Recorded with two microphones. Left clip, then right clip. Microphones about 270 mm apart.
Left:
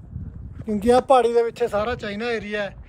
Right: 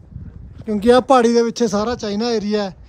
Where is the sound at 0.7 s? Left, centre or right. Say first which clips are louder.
Right 4 dB; right.